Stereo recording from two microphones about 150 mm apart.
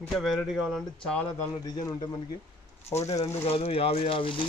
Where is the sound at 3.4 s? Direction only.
40° left (ahead or behind).